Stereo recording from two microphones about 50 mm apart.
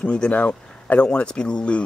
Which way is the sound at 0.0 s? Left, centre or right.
Left.